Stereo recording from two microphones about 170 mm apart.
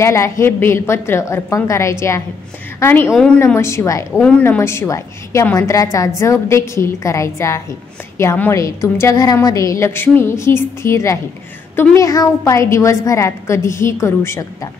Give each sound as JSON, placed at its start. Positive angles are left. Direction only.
{"t": 0.0, "sound": "a woman's voice", "side_deg": 15}